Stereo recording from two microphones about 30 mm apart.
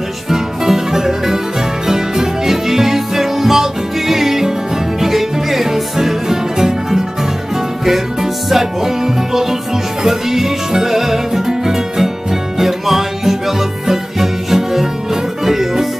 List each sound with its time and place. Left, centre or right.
0.3 s music: centre